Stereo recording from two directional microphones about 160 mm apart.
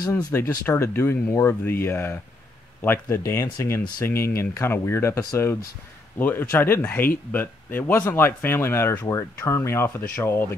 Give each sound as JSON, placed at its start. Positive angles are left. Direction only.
{"t": 0.1, "sound": "speech", "side_deg": 15}